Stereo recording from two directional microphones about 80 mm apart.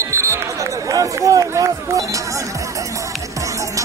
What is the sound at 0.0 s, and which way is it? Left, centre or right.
Run, right.